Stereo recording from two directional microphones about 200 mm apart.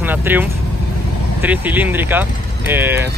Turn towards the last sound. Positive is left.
turn(degrees=-10)  # may be behind; listen again after turning